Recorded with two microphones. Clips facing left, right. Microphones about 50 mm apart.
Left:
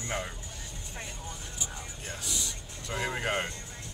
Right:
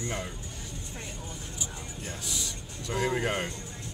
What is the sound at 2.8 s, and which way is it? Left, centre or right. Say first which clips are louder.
Speech: right 3 dB; centre.